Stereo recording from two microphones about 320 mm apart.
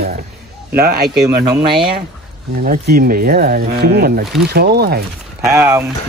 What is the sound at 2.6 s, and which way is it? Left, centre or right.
Speech, right.